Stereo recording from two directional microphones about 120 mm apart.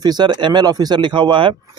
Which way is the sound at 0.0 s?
35° right (ahead or behind).